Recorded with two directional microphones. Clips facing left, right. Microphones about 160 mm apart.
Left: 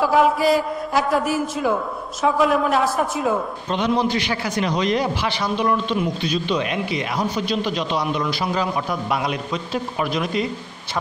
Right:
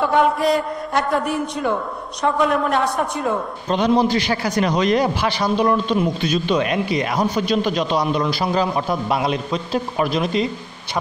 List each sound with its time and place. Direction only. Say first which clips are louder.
0.0 s a man's voice: even; centre (ahead or behind)
3.6 s a man's voice: right 5 dB; 40° right (ahead or behind)